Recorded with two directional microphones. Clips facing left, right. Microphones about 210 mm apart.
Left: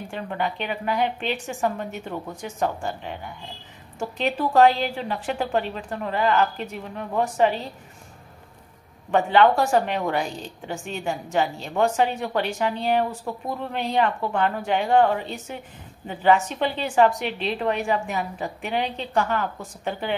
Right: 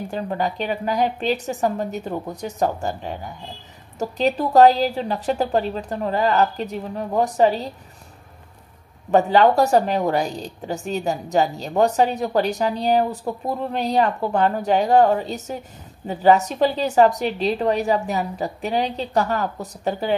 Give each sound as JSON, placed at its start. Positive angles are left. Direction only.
{"t": 0.1, "sound": "a woman's voice", "side_deg": -40}
{"t": 9.1, "sound": "a woman's voice", "side_deg": -40}